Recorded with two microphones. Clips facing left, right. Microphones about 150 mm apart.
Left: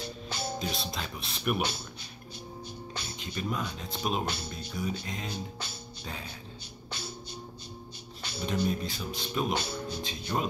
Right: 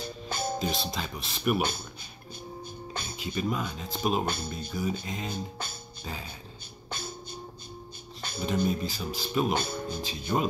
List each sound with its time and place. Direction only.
0.3 s music: 50° right (ahead or behind)
0.6 s speech: centre (ahead or behind)
2.9 s music: 50° right (ahead or behind)
3.2 s speech: 5° right (ahead or behind)
4.3 s speech: 50° right (ahead or behind)
5.0 s speech: centre (ahead or behind)
5.3 s speech: 50° right (ahead or behind)
8.2 s a sound: 50° right (ahead or behind)
8.6 s speech: centre (ahead or behind)
9.5 s speech: 50° right (ahead or behind)
10.0 s speech: centre (ahead or behind)